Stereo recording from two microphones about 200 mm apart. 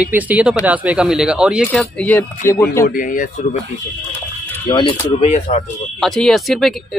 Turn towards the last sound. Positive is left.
turn(degrees=0)  # may be behind; listen again after turning